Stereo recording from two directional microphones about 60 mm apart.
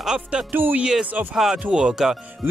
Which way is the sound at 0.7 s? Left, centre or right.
Centre.